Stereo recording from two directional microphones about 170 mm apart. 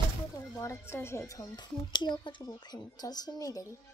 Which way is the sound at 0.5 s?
15° left (ahead or behind).